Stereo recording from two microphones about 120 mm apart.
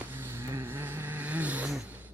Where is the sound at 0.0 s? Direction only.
15° right (ahead or behind).